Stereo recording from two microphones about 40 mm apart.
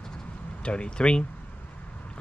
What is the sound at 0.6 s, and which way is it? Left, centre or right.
Speech, left.